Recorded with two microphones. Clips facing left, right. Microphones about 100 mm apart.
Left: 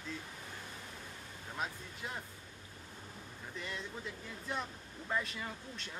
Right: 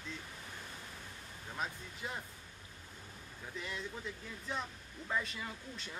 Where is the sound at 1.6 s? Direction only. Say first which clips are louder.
Even; centre (ahead or behind).